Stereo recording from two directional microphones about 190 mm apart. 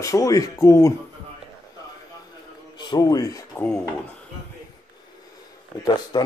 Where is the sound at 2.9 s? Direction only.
20° left (ahead or behind).